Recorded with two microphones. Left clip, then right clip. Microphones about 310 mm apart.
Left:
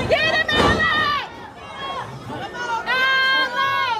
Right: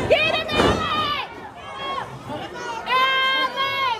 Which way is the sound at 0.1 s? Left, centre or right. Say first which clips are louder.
Left 1 dB; left.